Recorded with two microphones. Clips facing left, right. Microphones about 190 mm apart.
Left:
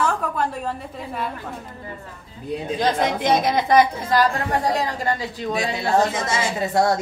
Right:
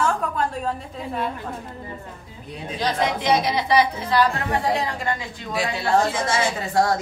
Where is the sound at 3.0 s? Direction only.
50° left (ahead or behind).